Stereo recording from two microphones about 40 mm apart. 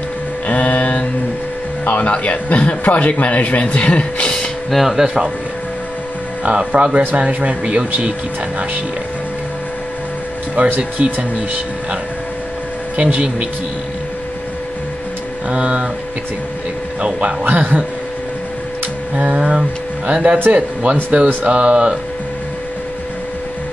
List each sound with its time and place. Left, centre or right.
0.5 s mantra: left
1.9 s a man's voice: left
4.6 s speech: centre
4.9 s speech: right
6.4 s speech: right
10.6 s speech: right
12.9 s speech: right
15.5 s speech: right
17.0 s speech: right
19.1 s speech: right